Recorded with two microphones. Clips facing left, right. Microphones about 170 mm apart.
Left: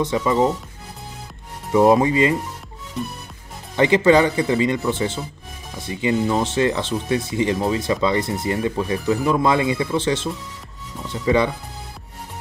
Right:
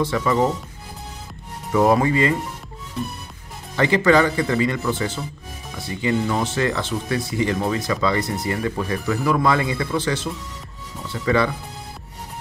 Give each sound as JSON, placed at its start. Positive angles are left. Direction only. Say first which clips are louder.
{"t": 0.0, "sound": "speech", "louder": "left 1 dB", "side_deg": 20}
{"t": 1.7, "sound": "speech", "louder": "left 2 dB", "side_deg": 20}
{"t": 3.7, "sound": "speech", "louder": "left 2 dB", "side_deg": 20}